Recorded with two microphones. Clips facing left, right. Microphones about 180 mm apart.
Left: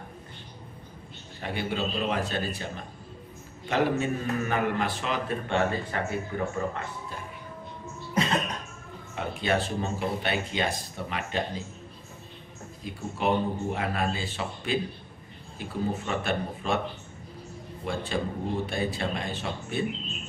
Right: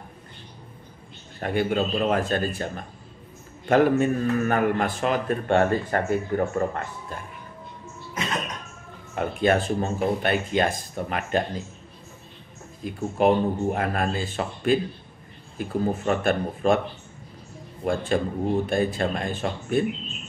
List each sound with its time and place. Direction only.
1.4 s a man's voice: 50° right (ahead or behind)
9.1 s a man's voice: 50° right (ahead or behind)
12.8 s a man's voice: 50° right (ahead or behind)
17.8 s a man's voice: 50° right (ahead or behind)